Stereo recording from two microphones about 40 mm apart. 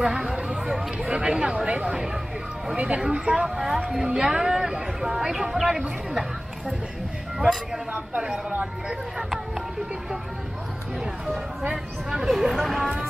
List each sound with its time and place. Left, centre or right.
0.4 s a sound: right
0.9 s speech: right
3.0 s speech: centre
7.3 s speech: centre
7.9 s speech: right
11.7 s speech: centre
12.3 s speech: centre